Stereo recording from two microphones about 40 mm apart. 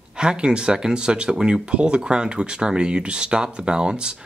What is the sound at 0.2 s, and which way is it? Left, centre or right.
Speech, right.